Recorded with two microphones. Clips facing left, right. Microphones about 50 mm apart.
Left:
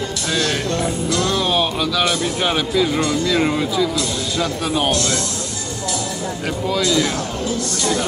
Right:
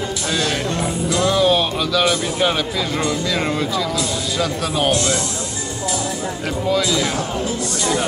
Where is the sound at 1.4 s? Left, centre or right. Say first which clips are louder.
Right 2 dB; centre.